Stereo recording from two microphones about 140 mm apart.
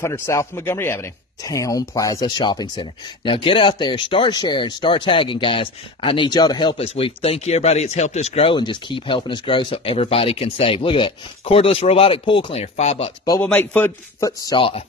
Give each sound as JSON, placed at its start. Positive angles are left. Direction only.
{"t": 0.0, "sound": "speech", "side_deg": 20}
{"t": 13.4, "sound": "speech", "side_deg": 10}
{"t": 14.2, "sound": "speech", "side_deg": 30}